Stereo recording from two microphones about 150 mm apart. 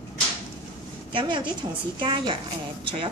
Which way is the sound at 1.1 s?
35° right (ahead or behind).